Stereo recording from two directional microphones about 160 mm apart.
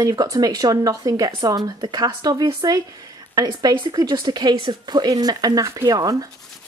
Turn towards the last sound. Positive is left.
turn(degrees=-25)  # may be behind; listen again after turning